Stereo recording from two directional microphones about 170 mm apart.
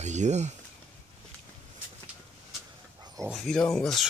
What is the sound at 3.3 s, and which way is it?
Speech, centre (ahead or behind).